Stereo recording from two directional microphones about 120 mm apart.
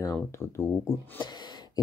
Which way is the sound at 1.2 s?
35° left (ahead or behind).